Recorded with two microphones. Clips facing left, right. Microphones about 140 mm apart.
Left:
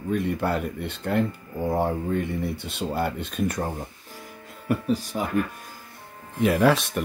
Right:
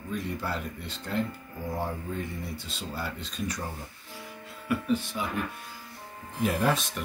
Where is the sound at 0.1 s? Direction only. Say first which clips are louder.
Left 8 dB; 60° left (ahead or behind).